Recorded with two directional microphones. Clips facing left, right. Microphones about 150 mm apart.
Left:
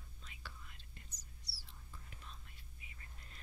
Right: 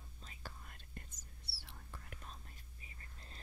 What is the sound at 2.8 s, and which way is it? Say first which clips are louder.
Whispering: right 1 dB; 35° right (ahead or behind).